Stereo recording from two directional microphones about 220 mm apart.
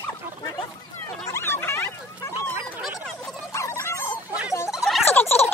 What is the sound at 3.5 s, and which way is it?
Dog, 15° left (ahead or behind).